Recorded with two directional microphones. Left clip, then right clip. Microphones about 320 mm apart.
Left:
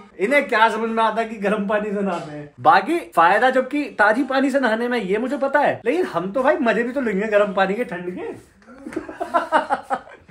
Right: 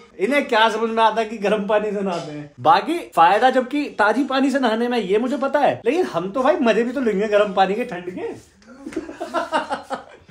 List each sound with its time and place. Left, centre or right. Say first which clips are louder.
0.2 s speech: left 1 dB; centre
9.3 s speech: left 4 dB; centre